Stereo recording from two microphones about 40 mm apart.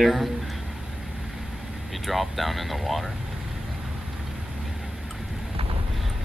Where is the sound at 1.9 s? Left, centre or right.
Centre.